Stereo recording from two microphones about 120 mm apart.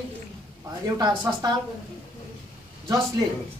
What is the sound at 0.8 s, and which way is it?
Speech, 30° right (ahead or behind).